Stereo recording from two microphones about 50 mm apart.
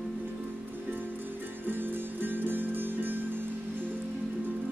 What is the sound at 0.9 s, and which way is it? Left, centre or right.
Music, right.